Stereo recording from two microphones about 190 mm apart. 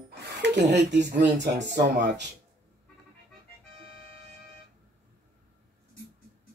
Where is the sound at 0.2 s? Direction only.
65° right (ahead or behind).